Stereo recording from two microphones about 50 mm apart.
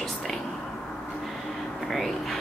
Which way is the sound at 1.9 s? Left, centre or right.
Centre.